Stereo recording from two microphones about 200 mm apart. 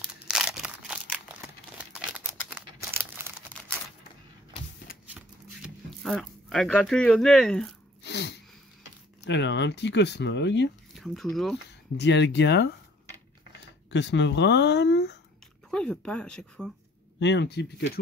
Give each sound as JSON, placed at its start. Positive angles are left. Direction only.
{"t": 0.3, "sound": "a sound", "side_deg": 0}
{"t": 1.8, "sound": "crumpling", "side_deg": -5}
{"t": 5.1, "sound": "shuffling cards", "side_deg": 0}
{"t": 8.0, "sound": "sneeze", "side_deg": 60}
{"t": 9.2, "sound": "speech", "side_deg": 60}
{"t": 11.0, "sound": "speech", "side_deg": 0}
{"t": 12.0, "sound": "speech", "side_deg": 60}
{"t": 13.8, "sound": "speech", "side_deg": 60}
{"t": 15.7, "sound": "speech", "side_deg": 5}
{"t": 17.2, "sound": "speech", "side_deg": 60}